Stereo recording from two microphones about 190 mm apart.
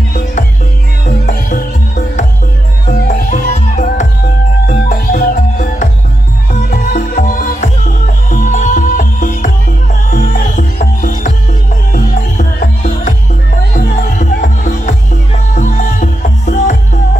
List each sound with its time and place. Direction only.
1.2 s music: 45° left (ahead or behind)
5.1 s music: 45° left (ahead or behind)